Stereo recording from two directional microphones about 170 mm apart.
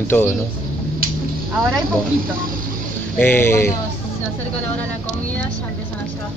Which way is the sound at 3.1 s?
10° left (ahead or behind).